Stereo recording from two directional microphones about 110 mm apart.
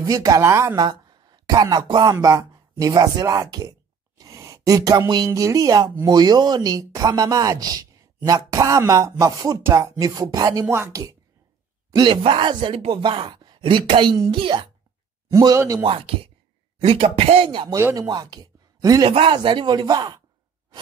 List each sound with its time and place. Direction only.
0.0 s speech: 30° right (ahead or behind)
0.8 s speech: 40° right (ahead or behind)
2.0 s speech: 30° right (ahead or behind)
11.9 s speech: 40° right (ahead or behind)
12.2 s speech: 55° right (ahead or behind)
15.2 s speech: 30° right (ahead or behind)
15.8 s speech: 55° right (ahead or behind)
17.9 s speech: 35° right (ahead or behind)
19.0 s speech: 55° right (ahead or behind)